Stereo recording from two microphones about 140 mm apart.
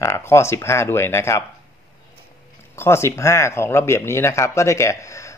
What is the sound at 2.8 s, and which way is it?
Speech, 20° left (ahead or behind).